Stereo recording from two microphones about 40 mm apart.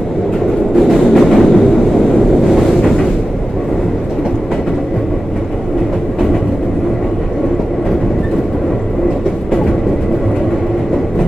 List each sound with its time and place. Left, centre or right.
0.7 s train: centre
2.0 s wind noise: centre